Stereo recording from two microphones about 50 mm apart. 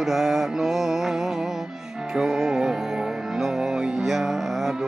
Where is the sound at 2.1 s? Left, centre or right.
Centre.